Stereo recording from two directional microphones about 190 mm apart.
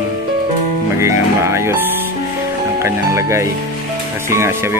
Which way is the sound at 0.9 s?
15° right (ahead or behind).